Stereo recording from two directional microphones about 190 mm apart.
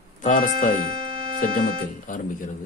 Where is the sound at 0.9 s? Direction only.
25° right (ahead or behind).